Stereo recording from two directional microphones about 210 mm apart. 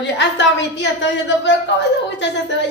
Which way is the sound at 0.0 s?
55° left (ahead or behind).